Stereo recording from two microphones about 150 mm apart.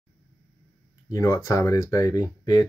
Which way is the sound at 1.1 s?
20° left (ahead or behind).